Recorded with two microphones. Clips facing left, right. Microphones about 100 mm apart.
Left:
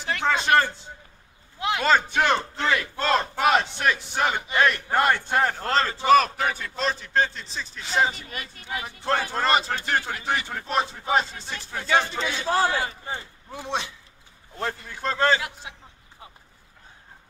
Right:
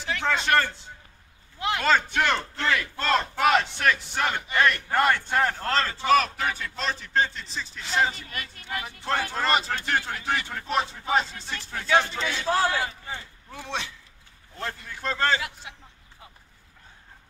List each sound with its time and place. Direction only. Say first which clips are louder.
0.2 s a man's voice: left 3 dB; 15° left (ahead or behind)
6.8 s a man's voice: left 2 dB; 5° left (ahead or behind)
12.7 s a man's voice: left 2 dB; 25° left (ahead or behind)